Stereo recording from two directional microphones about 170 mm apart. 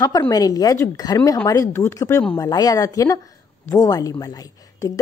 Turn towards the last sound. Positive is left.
turn(degrees=20)  # may be behind; listen again after turning